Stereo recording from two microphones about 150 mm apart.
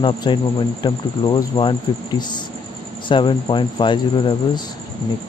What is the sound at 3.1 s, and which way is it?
Speech, 35° left (ahead or behind).